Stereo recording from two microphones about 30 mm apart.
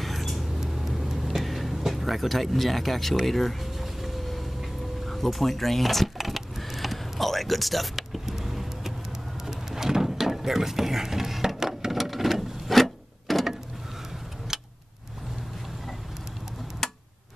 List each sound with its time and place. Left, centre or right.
0.0 s a sound: centre
0.6 s vehicle: centre
1.9 s speech: centre
4.0 s music: centre
5.0 s a sound: centre
8.4 s vehicle: centre
9.5 s mechanisms: centre
11.9 s printer: centre
14.5 s vehicle: centre
16.8 s tick-tock: centre